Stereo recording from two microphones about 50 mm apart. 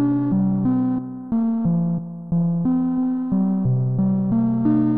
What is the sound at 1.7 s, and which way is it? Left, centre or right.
Music, right.